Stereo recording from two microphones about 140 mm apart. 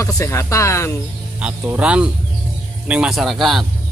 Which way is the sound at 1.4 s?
10° right (ahead or behind).